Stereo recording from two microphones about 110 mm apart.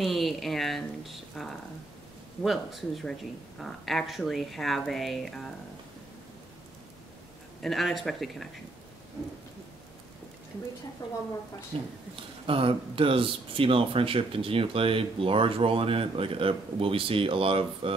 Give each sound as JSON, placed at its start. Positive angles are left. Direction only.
{"t": 0.0, "sound": "speech", "side_deg": 0}
{"t": 7.6, "sound": "speech", "side_deg": 0}
{"t": 11.7, "sound": "speech", "side_deg": -60}